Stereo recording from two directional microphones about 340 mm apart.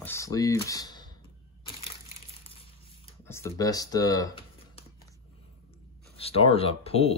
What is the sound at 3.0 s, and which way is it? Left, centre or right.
Speech, centre.